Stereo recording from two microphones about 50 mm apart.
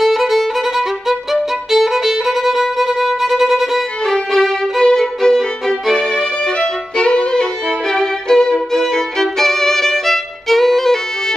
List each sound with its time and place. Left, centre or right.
0.0 s violin: centre
4.1 s violin: centre